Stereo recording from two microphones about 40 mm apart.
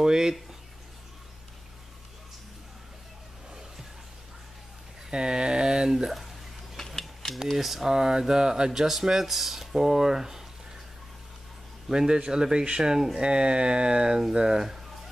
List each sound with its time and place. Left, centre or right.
0.0 s speech: centre
5.1 s speech: centre
6.0 s a sound: centre
6.9 s mechanisms: centre
7.5 s speech: centre
11.9 s speech: centre